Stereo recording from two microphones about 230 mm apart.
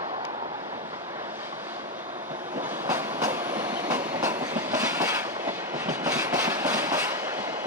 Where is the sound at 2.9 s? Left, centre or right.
Centre.